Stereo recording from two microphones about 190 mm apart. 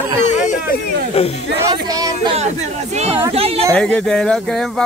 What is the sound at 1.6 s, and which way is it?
Speech, 20° right (ahead or behind).